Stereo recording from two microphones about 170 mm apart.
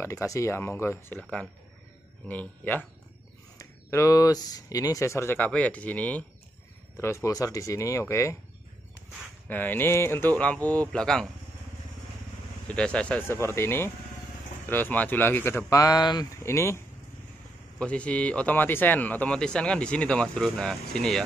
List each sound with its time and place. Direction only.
0.0 s speech: 15° left (ahead or behind)
9.5 s speech: 10° left (ahead or behind)
12.6 s speech: 5° left (ahead or behind)